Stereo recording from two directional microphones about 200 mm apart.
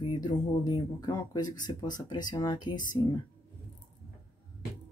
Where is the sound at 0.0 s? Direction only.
20° left (ahead or behind).